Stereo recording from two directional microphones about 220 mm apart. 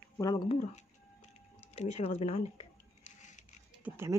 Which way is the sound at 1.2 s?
30° left (ahead or behind).